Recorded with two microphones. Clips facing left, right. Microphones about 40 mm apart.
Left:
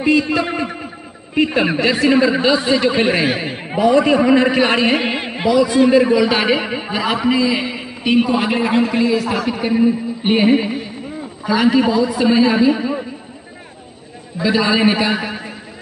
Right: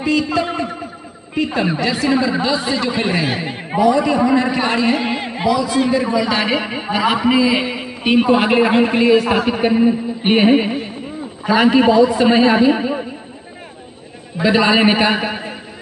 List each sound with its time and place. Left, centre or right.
0.0 s a man's voice: left
3.3 s speech: centre
3.9 s a man's voice: left
5.2 s a sound: left
5.9 s a man's voice: left; by 7.9 s centre
8.3 s a man's voice: right
14.4 s a man's voice: right